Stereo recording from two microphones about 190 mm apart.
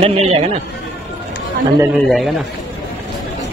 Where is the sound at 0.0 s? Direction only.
30° right (ahead or behind).